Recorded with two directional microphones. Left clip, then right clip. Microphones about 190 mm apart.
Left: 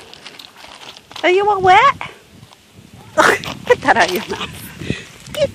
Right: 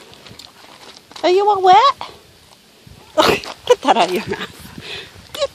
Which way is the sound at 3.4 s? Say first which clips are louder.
Even; 25° left (ahead or behind).